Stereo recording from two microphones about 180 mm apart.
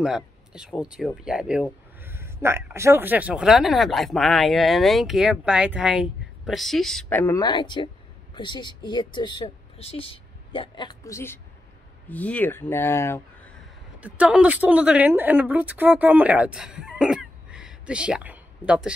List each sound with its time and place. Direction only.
0.0 s speech: 5° right (ahead or behind)
7.4 s speech: 25° left (ahead or behind)
13.9 s speech: 5° right (ahead or behind)